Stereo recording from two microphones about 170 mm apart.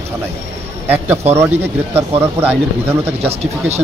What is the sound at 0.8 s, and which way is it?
Speech, 10° right (ahead or behind).